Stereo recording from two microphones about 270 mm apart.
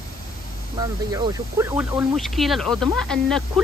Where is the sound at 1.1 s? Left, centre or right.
Centre.